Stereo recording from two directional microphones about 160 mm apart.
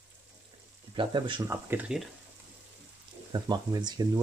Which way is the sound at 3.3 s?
25° right (ahead or behind).